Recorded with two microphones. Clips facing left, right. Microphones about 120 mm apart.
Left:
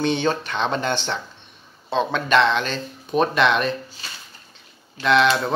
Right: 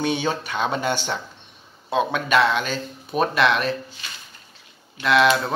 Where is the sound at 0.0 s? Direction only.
10° right (ahead or behind).